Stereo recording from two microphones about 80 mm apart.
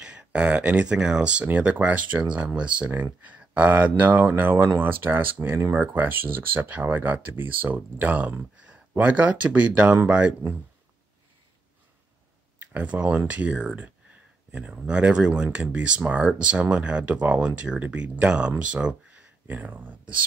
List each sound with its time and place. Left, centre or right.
0.0 s speech: centre
12.5 s speech: centre